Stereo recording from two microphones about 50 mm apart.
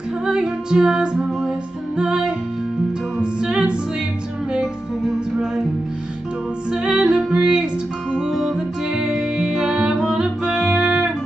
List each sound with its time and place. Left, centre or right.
0.3 s music: centre
4.6 s music: centre
6.7 s music: centre
7.3 s music: centre
8.3 s music: centre